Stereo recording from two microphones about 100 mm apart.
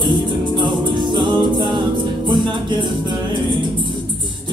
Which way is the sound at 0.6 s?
50° right (ahead or behind).